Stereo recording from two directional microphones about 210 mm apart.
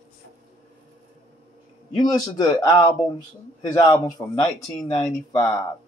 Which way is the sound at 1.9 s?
20° left (ahead or behind).